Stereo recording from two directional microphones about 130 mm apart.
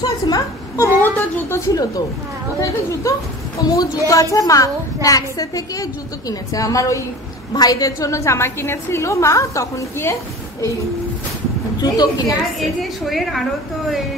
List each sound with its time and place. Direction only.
0.0 s a woman's voice: 30° left (ahead or behind)
1.7 s a woman's voice: 30° left (ahead or behind)
11.8 s a woman's voice: 30° left (ahead or behind)
12.5 s a woman's voice: centre (ahead or behind)